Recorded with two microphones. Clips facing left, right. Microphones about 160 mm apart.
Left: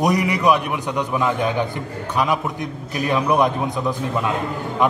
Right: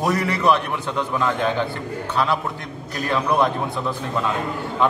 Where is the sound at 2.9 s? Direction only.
15° left (ahead or behind).